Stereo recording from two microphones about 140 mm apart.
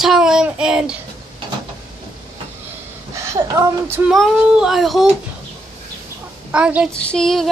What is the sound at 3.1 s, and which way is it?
Speech, 20° right (ahead or behind).